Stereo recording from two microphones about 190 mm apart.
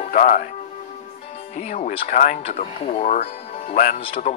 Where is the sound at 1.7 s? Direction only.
40° left (ahead or behind).